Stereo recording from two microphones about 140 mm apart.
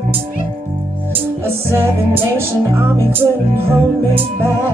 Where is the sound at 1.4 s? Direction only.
15° right (ahead or behind).